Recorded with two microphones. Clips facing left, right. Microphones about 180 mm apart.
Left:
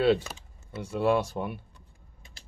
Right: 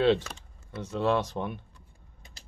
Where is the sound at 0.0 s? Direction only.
10° left (ahead or behind).